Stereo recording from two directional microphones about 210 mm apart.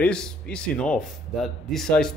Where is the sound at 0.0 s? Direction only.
5° left (ahead or behind).